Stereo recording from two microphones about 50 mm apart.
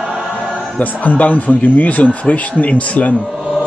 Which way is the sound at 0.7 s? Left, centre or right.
Left.